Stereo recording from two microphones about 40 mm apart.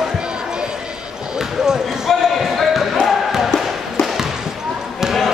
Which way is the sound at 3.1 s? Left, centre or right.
Centre.